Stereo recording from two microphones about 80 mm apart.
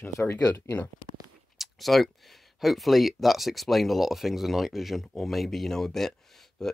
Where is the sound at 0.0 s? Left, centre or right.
Left.